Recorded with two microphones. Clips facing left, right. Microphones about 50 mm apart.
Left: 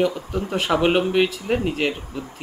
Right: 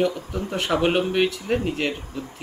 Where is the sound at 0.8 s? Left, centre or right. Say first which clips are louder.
Left 2 dB; centre.